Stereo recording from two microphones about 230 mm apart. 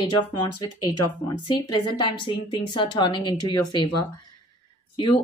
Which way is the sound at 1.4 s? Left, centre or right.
Centre.